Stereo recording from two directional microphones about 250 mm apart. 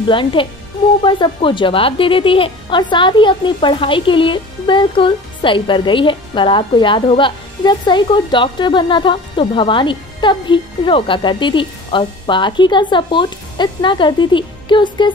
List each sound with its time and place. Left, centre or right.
0.1 s a woman's voice: centre